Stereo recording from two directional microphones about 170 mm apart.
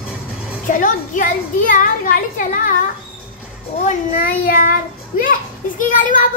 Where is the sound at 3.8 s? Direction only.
50° left (ahead or behind).